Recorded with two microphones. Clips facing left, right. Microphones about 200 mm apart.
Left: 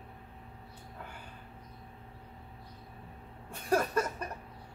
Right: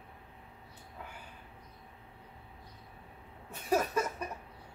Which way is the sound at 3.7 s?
5° right (ahead or behind).